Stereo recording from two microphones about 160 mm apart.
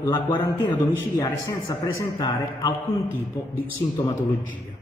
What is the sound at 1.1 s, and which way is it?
Speech, 25° left (ahead or behind).